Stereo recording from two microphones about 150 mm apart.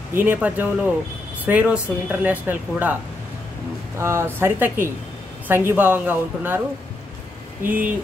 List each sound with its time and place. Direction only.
0.1 s speech: 10° right (ahead or behind)
4.0 s speech: 15° right (ahead or behind)
7.6 s speech: 10° right (ahead or behind)